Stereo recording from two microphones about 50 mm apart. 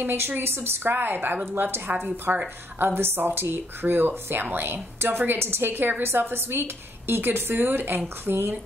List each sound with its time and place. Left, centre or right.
0.0 s a woman's voice: right
2.3 s speech: right
2.8 s a woman's voice: right